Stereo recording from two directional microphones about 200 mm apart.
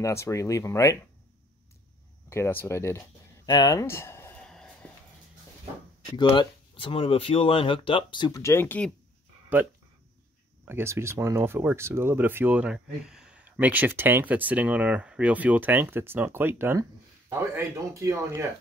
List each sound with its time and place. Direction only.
0.0 s speech: 15° left (ahead or behind)
2.2 s speech: 10° left (ahead or behind)
3.4 s a sound: 20° left (ahead or behind); by 4.9 s 5° left (ahead or behind)
6.1 s speech: 25° left (ahead or behind); by 8.9 s 10° left (ahead or behind)
9.5 s speech: 10° right (ahead or behind)